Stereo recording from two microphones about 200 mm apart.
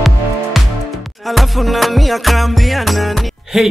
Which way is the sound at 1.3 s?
Centre (ahead or behind).